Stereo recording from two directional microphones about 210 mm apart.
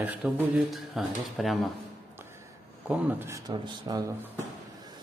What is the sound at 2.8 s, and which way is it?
A man's voice, 10° right (ahead or behind).